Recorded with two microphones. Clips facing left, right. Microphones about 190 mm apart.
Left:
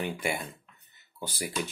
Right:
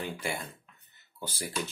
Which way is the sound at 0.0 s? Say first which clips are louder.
Left 3 dB; 15° left (ahead or behind).